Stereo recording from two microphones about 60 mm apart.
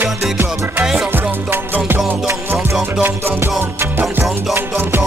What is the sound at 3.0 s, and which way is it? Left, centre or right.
Music, right.